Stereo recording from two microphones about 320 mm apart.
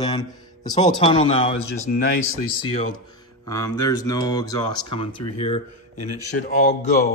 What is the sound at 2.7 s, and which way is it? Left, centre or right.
Speech, centre.